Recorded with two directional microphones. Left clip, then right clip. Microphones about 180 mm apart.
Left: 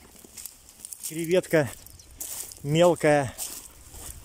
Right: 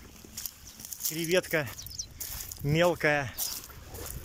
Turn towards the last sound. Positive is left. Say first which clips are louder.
# left 6 dB
turn(degrees=25)  # may be behind; listen again after turning